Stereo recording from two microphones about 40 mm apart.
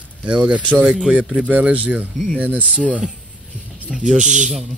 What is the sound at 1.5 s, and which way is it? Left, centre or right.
Speech, right.